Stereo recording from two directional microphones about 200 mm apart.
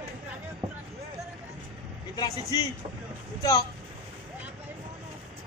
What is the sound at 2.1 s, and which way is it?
Speech, 20° left (ahead or behind).